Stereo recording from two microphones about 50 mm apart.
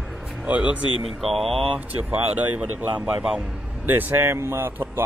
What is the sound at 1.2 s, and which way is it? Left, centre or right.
Speech, centre.